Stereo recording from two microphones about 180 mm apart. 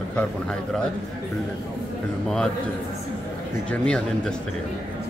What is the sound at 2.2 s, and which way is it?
Speech, 5° left (ahead or behind).